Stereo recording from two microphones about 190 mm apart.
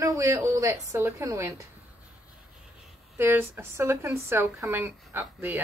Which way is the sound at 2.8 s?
10° right (ahead or behind).